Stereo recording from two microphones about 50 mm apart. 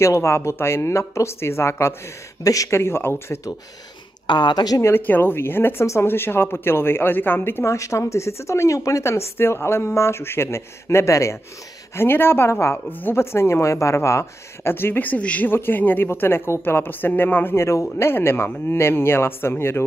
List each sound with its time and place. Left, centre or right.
0.0 s speech: left
4.9 s speech: left
7.6 s speech: left
11.9 s speech: left
12.4 s speech: left
14.7 s speech: left
15.0 s speech: left
15.5 s speech: left
17.6 s speech: left
17.9 s speech: left